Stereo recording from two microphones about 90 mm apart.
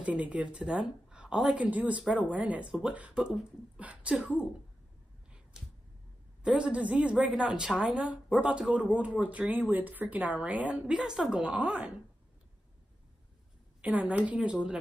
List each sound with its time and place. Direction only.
0.0 s a woman's voice: 15° right (ahead or behind)
6.4 s a woman's voice: 10° right (ahead or behind)
13.7 s a woman's voice: 15° right (ahead or behind)